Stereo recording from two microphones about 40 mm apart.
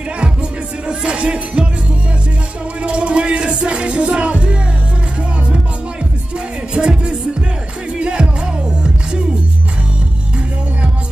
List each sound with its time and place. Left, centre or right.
0.2 s music: right
2.8 s a sound: right
3.6 s music: right
6.7 s music: centre